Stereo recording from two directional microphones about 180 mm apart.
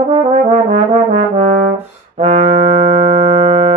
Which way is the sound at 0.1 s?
35° right (ahead or behind).